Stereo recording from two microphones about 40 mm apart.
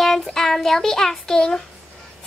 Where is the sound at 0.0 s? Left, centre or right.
Centre.